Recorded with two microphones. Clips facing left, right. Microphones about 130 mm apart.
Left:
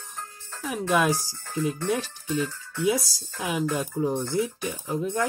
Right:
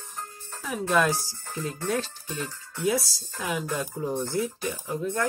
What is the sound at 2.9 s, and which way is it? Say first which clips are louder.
Speech: left 1 dB; 15° left (ahead or behind).